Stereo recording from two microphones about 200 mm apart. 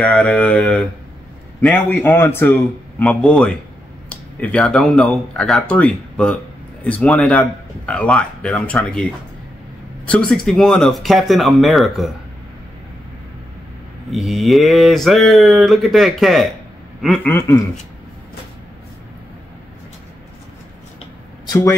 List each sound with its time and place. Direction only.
0.0 s a man's voice: 5° left (ahead or behind)
10.0 s speech: 5° left (ahead or behind)
14.1 s a man's voice: centre (ahead or behind)
21.5 s speech: 20° left (ahead or behind)